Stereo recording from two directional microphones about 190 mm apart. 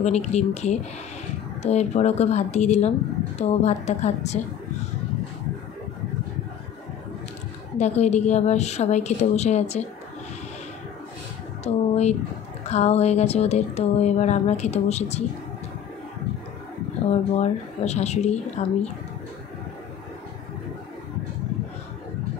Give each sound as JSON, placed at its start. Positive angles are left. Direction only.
{"t": 0.0, "sound": "speech", "side_deg": 35}
{"t": 7.7, "sound": "speech", "side_deg": 35}
{"t": 11.6, "sound": "speech", "side_deg": 35}
{"t": 17.1, "sound": "speech", "side_deg": 35}